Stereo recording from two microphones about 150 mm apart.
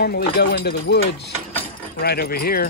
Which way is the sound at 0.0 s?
90° left.